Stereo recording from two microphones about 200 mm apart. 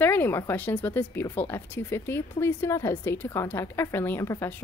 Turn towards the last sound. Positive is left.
turn(degrees=15)  # may be behind; listen again after turning